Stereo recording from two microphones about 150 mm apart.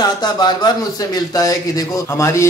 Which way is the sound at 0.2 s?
30° left (ahead or behind).